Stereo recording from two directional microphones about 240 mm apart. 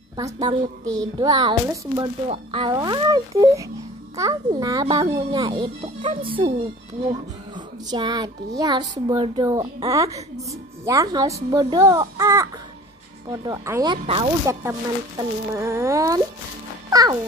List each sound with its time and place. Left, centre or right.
0.2 s a child's voice: centre
14.0 s speech: right
14.5 s a child's voice: centre
16.9 s music: centre